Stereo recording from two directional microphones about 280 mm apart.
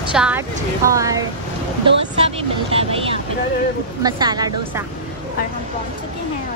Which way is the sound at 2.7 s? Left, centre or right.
Centre.